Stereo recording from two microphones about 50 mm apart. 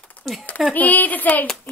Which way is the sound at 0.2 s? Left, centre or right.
Centre.